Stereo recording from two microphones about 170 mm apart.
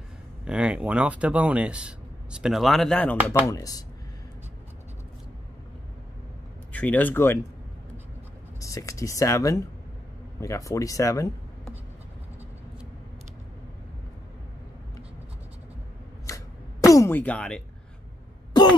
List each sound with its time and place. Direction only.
0.5 s speech: 5° right (ahead or behind)
3.4 s speech: 20° left (ahead or behind)
6.7 s speech: 10° left (ahead or behind)
8.5 s speech: 20° left (ahead or behind)
16.3 s a sound: 20° left (ahead or behind)
18.5 s throat clearing: 25° left (ahead or behind)